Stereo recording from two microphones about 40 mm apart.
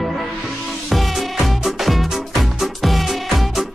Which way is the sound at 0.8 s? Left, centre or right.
Centre.